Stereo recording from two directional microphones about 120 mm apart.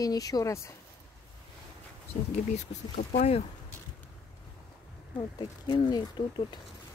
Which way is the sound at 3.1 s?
60° left (ahead or behind).